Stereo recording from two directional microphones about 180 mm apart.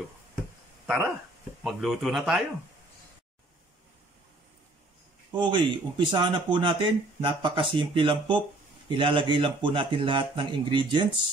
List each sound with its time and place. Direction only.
0.8 s speech: 5° right (ahead or behind)
5.3 s speech: 25° right (ahead or behind)